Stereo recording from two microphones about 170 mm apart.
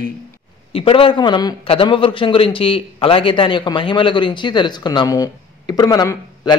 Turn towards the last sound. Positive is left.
turn(degrees=20)  # may be behind; listen again after turning